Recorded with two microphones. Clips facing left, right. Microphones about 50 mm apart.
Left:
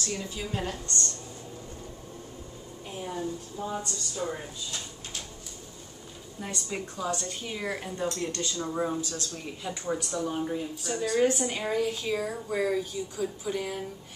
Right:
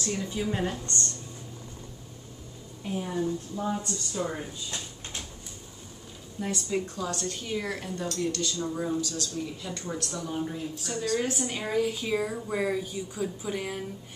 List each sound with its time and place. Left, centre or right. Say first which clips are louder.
0.0 s speech: right 4 dB; right
3.6 s speech: right 4 dB; centre
4.1 s speech: right 2 dB; right
6.4 s speech: right 5 dB; centre; by 9.7 s left
9.7 s a woman's voice: left 3 dB; centre